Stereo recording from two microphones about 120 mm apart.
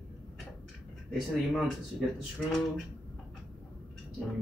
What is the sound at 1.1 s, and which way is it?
Speech, centre (ahead or behind).